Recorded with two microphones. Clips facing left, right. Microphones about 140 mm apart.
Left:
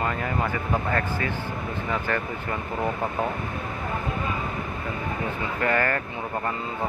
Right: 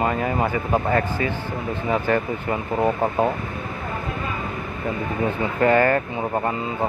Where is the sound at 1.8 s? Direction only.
20° right (ahead or behind).